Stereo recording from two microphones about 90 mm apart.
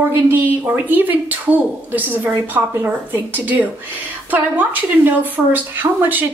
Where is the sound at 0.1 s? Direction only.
20° right (ahead or behind).